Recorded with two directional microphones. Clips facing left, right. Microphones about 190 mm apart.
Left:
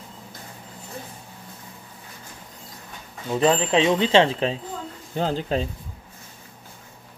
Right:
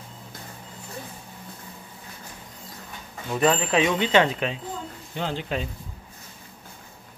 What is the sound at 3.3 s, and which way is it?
Speech, 25° left (ahead or behind).